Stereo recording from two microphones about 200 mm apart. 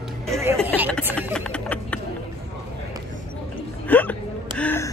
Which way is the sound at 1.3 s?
5° left (ahead or behind).